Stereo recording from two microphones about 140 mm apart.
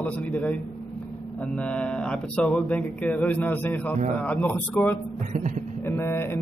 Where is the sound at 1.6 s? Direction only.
10° left (ahead or behind).